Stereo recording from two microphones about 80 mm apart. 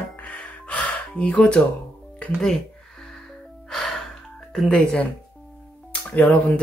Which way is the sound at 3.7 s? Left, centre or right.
Centre.